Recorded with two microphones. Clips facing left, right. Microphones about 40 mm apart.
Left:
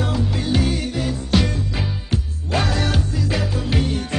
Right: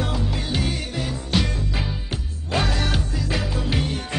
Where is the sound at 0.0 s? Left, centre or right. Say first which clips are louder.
Left 4 dB; centre.